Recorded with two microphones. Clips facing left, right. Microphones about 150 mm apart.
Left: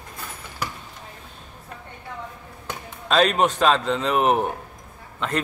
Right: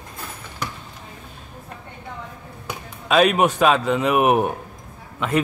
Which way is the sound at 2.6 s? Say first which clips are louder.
Right 2 dB; 10° right (ahead or behind).